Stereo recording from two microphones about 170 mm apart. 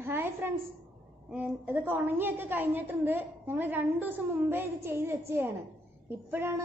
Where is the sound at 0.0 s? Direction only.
10° right (ahead or behind).